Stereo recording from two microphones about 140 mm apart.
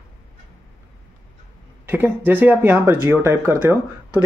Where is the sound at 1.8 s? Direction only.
15° right (ahead or behind).